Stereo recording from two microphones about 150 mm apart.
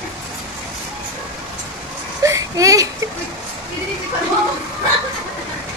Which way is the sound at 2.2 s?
20° right (ahead or behind).